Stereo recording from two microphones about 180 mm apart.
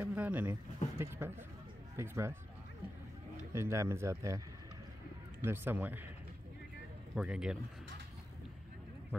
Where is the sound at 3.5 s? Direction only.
15° right (ahead or behind).